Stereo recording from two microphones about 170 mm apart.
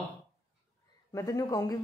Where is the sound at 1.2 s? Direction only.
20° left (ahead or behind).